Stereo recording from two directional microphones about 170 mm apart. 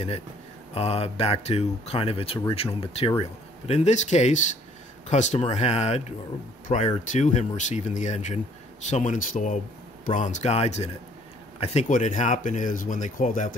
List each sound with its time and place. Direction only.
0.7 s speech: 35° left (ahead or behind)